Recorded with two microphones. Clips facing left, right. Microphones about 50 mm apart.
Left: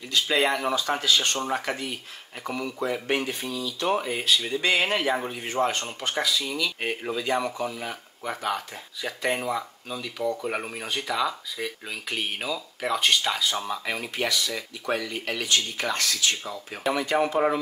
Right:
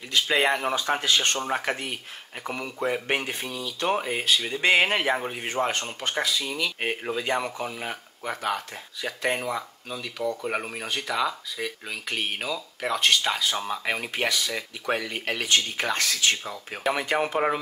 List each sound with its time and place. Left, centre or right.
0.5 s speech: right
4.6 s speech: right
8.3 s speech: centre
13.8 s speech: right